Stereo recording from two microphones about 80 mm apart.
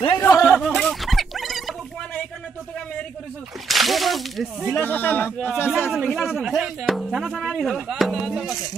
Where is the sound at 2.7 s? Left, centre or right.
Centre.